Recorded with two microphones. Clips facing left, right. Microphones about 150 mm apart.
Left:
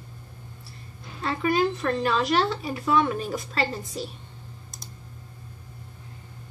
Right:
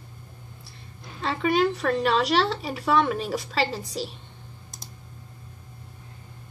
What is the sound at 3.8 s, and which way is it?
Speech, 75° right (ahead or behind).